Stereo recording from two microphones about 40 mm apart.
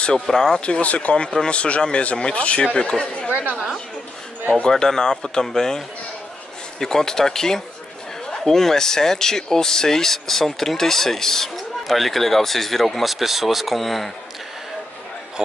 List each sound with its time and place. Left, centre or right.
0.0 s speech: centre
0.6 s speech: left
4.6 s speech: centre